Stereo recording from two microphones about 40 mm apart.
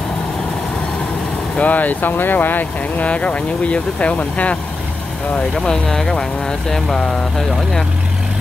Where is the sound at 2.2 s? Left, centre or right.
Left.